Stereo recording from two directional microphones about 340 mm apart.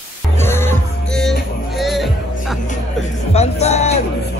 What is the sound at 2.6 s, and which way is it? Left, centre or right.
Music, centre.